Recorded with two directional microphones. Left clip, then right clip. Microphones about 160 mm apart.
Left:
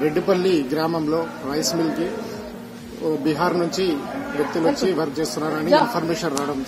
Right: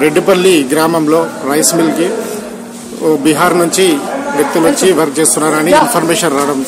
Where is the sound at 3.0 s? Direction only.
20° right (ahead or behind).